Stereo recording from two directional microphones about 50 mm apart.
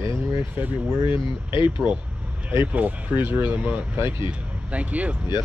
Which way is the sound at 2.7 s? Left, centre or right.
Right.